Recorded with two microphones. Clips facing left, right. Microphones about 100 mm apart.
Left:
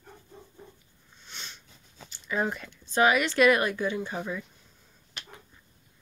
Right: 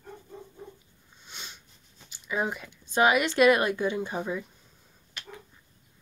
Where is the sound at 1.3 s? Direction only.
10° right (ahead or behind).